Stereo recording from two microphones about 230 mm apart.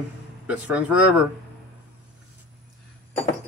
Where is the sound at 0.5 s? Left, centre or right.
Centre.